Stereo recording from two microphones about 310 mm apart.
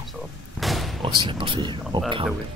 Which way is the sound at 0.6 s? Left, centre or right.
Centre.